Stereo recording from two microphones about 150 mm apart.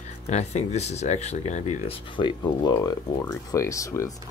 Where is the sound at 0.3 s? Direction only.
50° left (ahead or behind).